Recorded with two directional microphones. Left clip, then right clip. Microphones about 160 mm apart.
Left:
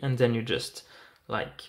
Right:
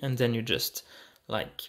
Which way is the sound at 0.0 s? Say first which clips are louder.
Left 3 dB; 30° right (ahead or behind).